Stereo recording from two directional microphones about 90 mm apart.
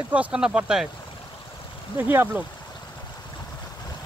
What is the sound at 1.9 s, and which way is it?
Speech, 25° right (ahead or behind).